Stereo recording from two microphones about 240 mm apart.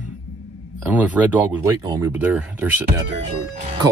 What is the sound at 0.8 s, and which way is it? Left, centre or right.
Speech, centre.